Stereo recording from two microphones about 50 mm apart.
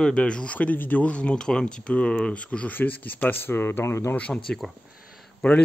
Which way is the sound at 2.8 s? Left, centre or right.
Left.